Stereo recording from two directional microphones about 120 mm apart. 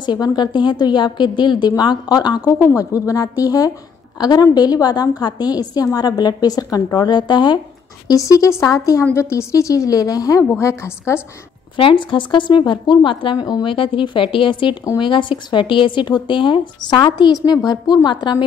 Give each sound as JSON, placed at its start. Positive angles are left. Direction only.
{"t": 0.0, "sound": "a woman's voice", "side_deg": 35}
{"t": 8.1, "sound": "a woman's voice", "side_deg": 25}
{"t": 11.7, "sound": "a woman's voice", "side_deg": 45}